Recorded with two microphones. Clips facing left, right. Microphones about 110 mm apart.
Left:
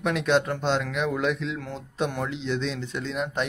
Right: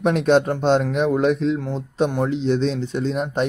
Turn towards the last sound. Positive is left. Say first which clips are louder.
# right 7 dB
turn(degrees=-40)  # may be behind; listen again after turning